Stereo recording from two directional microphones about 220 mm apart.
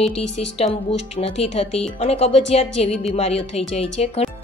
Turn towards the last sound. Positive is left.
turn(degrees=30)  # may be behind; listen again after turning